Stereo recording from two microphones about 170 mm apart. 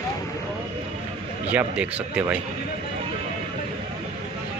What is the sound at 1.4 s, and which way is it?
Speech, 5° right (ahead or behind).